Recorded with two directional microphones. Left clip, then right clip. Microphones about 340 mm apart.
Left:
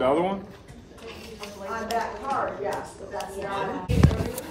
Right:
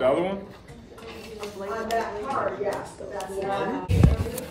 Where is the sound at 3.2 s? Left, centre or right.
Right.